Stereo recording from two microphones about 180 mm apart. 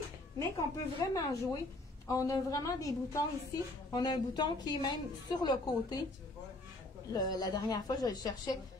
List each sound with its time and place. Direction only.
0.4 s a woman's voice: 20° left (ahead or behind)
7.1 s a woman's voice: 20° left (ahead or behind)